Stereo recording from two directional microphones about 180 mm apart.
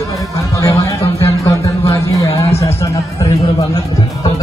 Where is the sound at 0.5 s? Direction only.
20° left (ahead or behind).